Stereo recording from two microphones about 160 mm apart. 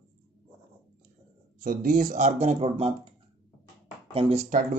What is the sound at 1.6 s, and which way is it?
A man's voice, 60° right (ahead or behind).